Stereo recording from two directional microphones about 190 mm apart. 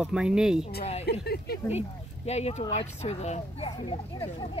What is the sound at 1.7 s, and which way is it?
Speech, 35° left (ahead or behind).